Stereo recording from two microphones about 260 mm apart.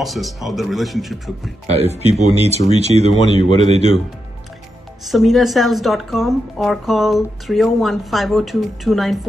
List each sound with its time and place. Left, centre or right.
0.0 s speech: centre
1.7 s speech: right
3.2 s speech: centre
5.0 s speech: centre